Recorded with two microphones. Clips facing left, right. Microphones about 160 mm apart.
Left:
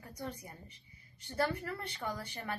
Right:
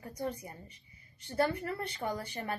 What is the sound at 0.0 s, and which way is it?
A woman's voice, 25° right (ahead or behind).